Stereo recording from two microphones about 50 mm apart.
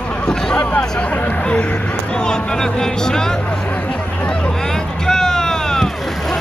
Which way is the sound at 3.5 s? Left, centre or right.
Left.